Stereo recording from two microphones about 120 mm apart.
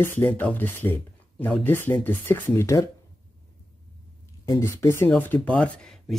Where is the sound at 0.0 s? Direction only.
15° left (ahead or behind).